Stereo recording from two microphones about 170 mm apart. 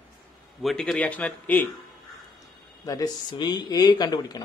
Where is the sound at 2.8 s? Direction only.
20° left (ahead or behind).